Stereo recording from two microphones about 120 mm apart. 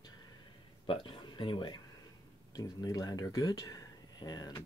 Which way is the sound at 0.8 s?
45° left (ahead or behind).